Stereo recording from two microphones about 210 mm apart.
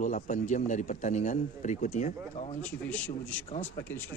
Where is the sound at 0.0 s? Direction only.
35° left (ahead or behind).